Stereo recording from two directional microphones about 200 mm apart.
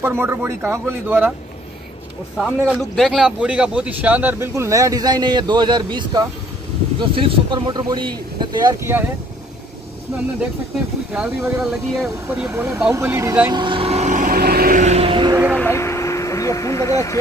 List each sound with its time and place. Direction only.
0.0 s a man's voice: 10° right (ahead or behind)
2.6 s a man's voice: 5° right (ahead or behind)
11.1 s speech: 5° right (ahead or behind); by 15.4 s 25° right (ahead or behind)
15.5 s vehicle: 10° left (ahead or behind)